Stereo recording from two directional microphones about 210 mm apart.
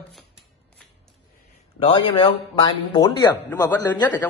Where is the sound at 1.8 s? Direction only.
25° left (ahead or behind).